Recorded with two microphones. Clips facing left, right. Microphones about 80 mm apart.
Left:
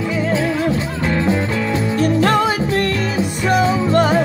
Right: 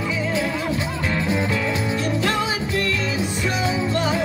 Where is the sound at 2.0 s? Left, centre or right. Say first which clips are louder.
Left 11 dB; left.